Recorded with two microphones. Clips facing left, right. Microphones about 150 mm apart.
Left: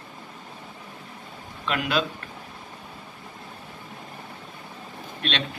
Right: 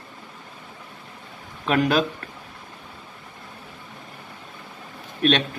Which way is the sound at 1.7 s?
45° right (ahead or behind).